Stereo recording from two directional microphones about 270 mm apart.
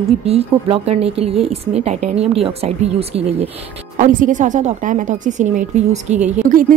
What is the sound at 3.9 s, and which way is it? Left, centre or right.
A woman's voice, right.